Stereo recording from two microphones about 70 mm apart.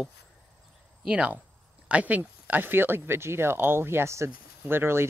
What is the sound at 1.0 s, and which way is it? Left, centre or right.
Speech, centre.